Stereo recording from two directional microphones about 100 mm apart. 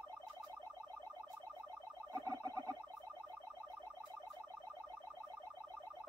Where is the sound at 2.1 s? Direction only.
40° right (ahead or behind).